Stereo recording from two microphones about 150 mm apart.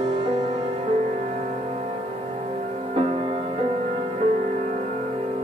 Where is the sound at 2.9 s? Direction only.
45° right (ahead or behind).